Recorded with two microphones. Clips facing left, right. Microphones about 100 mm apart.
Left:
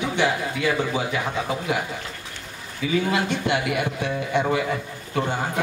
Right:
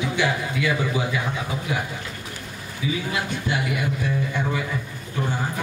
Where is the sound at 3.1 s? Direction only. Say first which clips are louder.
Left 4 dB; 65° left (ahead or behind).